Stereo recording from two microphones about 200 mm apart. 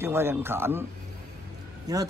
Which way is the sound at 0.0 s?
10° right (ahead or behind).